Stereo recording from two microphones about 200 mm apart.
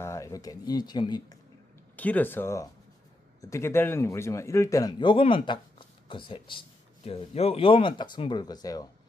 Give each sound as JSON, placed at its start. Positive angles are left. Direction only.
{"t": 0.0, "sound": "speech", "side_deg": 15}
{"t": 2.0, "sound": "a man's voice", "side_deg": 10}